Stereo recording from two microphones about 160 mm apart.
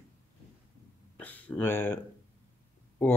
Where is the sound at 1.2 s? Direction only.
10° left (ahead or behind).